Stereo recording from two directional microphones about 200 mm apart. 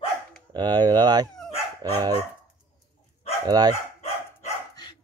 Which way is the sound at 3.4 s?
20° right (ahead or behind).